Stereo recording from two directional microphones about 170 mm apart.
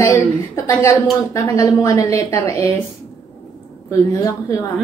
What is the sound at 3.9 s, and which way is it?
Speech, 20° left (ahead or behind).